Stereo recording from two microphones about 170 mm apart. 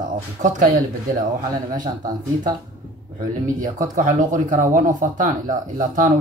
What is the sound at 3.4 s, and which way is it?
Speech, 50° right (ahead or behind).